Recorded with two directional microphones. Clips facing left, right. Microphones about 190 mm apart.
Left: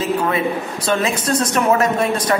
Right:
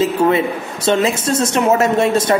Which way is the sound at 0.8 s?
25° right (ahead or behind).